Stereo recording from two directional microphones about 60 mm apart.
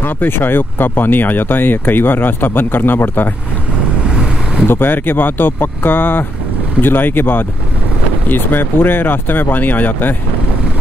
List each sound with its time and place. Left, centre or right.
0.0 s speech: left
4.6 s speech: left